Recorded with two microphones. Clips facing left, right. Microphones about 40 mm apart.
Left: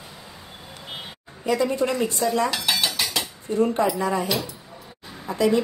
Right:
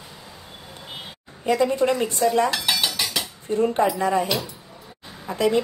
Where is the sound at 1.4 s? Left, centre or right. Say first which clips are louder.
Right 2 dB; right.